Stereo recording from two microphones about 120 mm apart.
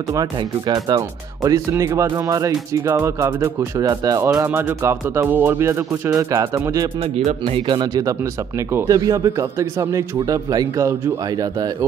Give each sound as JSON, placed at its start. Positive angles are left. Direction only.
{"t": 0.1, "sound": "speech", "side_deg": -35}
{"t": 4.2, "sound": "speech", "side_deg": -15}
{"t": 7.4, "sound": "speech", "side_deg": -45}